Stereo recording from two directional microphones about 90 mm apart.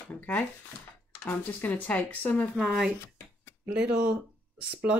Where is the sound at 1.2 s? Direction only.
20° left (ahead or behind).